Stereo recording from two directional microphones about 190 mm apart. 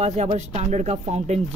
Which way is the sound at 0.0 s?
35° right (ahead or behind).